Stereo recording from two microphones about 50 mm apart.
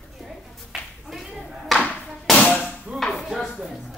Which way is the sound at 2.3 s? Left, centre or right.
Left.